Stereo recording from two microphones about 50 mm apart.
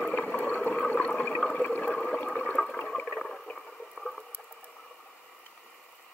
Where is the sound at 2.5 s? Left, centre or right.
Centre.